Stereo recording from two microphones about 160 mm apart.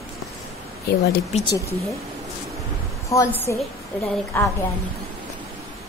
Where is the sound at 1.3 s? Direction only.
45° left (ahead or behind).